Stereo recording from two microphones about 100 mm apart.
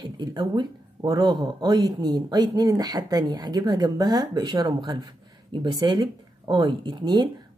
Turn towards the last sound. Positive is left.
turn(degrees=-50)  # may be behind; listen again after turning